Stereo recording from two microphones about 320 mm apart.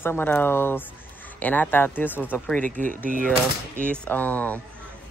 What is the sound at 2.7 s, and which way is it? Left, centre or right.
Speech, right.